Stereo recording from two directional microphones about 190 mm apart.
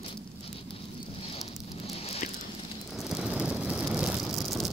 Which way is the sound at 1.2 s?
30° left (ahead or behind).